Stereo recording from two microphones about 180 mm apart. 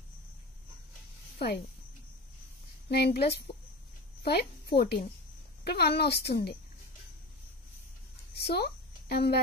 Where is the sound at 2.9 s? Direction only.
65° left (ahead or behind).